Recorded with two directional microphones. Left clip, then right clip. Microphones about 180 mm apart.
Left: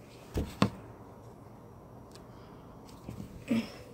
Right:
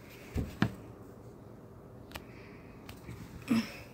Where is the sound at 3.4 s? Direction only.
30° right (ahead or behind).